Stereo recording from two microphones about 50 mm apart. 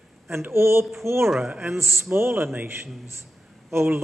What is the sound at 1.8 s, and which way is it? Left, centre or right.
Speech, right.